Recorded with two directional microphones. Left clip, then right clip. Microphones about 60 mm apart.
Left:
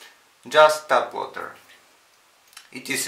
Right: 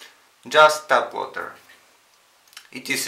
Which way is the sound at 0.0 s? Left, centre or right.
Right.